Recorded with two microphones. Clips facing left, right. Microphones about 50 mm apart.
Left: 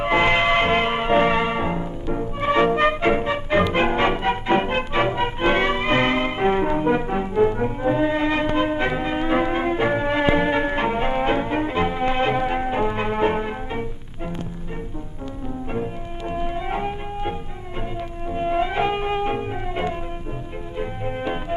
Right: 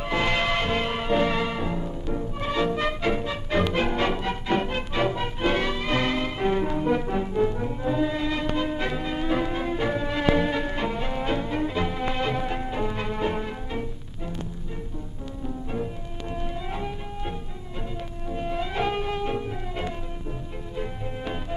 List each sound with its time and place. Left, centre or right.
0.0 s music: left
15.7 s music: left
21.2 s music: left